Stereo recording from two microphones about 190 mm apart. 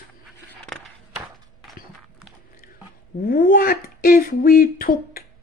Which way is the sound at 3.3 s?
50° left (ahead or behind).